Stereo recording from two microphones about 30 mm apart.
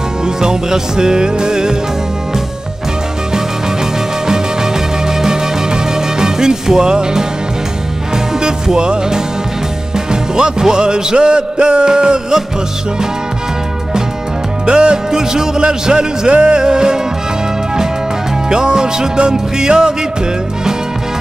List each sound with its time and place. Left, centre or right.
0.2 s music: right
5.0 s music: right
8.4 s music: right
14.7 s music: right
15.0 s music: right
18.5 s music: right